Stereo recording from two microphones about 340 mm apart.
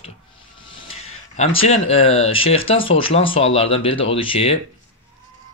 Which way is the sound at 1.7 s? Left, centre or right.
Centre.